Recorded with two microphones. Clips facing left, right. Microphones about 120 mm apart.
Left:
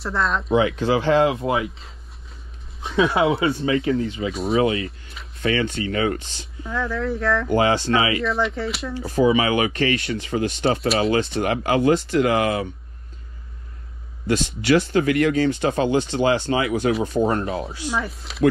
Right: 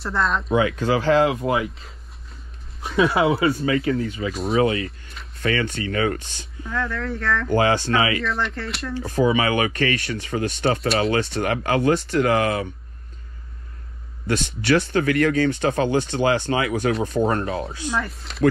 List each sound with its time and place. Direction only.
0.0 s speech: centre (ahead or behind)
0.6 s speech: 20° left (ahead or behind)
1.5 s speech: 5° left (ahead or behind)
3.3 s speech: 25° left (ahead or behind)
4.3 s speech: centre (ahead or behind)
4.6 s speech: 30° left (ahead or behind)
6.7 s speech: centre (ahead or behind)
7.4 s speech: 20° left (ahead or behind)
8.2 s speech: centre (ahead or behind)
9.0 s speech: 25° left (ahead or behind)
14.2 s speech: 15° left (ahead or behind)
17.8 s speech: 5° left (ahead or behind)